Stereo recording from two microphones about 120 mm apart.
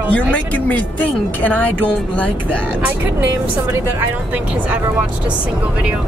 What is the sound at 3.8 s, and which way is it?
Speech, 15° right (ahead or behind).